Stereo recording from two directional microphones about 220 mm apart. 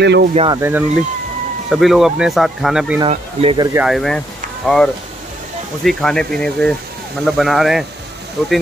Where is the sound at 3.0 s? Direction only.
25° right (ahead or behind).